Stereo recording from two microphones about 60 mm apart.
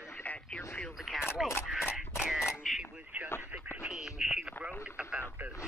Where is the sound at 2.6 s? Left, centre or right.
Centre.